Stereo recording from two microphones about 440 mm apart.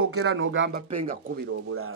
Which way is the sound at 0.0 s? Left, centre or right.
Right.